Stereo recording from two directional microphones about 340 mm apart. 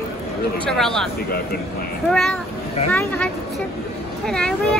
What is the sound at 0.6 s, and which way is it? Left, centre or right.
Speech, centre.